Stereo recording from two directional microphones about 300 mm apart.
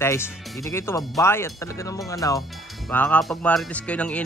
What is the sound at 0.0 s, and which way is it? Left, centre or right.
Speech, centre.